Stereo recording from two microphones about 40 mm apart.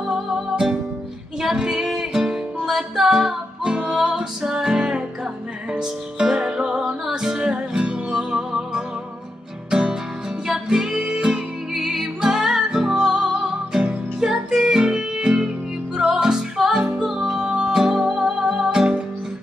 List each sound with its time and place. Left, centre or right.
0.1 s music: centre
1.4 s female singing: centre
2.0 s music: centre
11.7 s music: centre